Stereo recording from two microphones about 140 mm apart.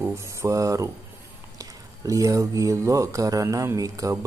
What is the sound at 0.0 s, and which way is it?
Speech, 20° right (ahead or behind).